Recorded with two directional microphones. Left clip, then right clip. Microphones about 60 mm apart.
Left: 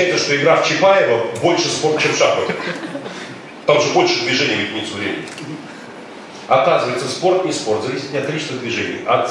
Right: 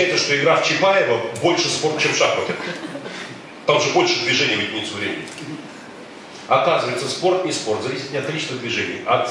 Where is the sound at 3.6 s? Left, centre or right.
Centre.